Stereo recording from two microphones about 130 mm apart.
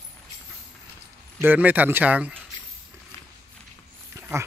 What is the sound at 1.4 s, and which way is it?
Speech, 15° right (ahead or behind).